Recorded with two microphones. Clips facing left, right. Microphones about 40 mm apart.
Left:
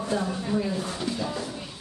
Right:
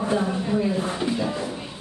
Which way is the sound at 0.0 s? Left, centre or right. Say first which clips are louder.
Right 4 dB; right.